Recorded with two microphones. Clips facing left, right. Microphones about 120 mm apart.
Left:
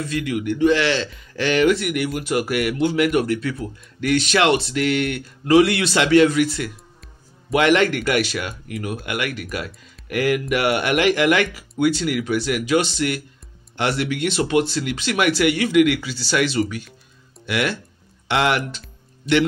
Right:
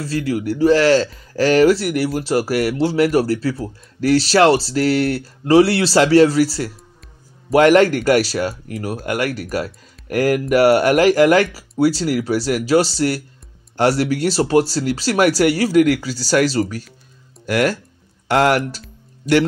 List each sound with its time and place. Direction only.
0.0 s speech: 35° right (ahead or behind)